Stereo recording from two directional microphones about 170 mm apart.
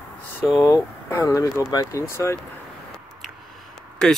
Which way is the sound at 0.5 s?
20° left (ahead or behind).